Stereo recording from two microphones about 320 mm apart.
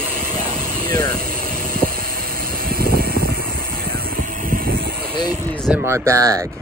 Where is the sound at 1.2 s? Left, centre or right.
Right.